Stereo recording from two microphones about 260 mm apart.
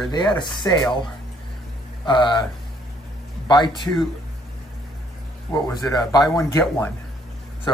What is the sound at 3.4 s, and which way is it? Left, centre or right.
Speech, centre.